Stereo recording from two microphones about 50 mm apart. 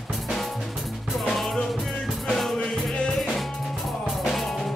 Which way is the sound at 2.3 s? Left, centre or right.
Centre.